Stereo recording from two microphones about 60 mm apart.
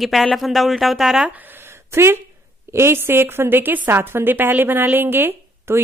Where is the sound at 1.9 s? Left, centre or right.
Right.